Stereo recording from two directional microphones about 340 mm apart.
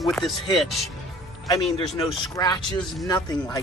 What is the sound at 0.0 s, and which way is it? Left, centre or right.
A woman's voice, centre.